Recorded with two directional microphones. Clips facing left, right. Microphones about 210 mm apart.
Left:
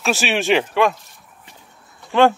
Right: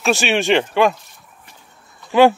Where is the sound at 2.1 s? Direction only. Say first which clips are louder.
Right 3 dB; 5° right (ahead or behind).